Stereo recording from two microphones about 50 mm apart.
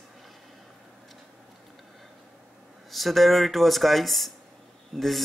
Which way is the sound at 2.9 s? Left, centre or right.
Centre.